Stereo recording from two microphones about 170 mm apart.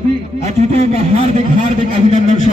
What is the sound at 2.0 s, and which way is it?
Speech, 45° left (ahead or behind).